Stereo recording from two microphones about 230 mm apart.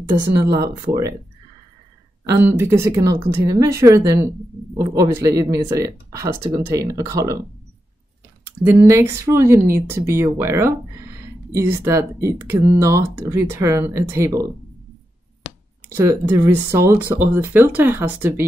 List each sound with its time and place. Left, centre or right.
0.3 s speech: centre
2.2 s speech: centre
8.6 s speech: centre
15.9 s speech: centre